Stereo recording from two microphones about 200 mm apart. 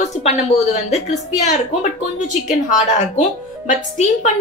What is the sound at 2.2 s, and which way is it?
A woman's voice, 40° left (ahead or behind).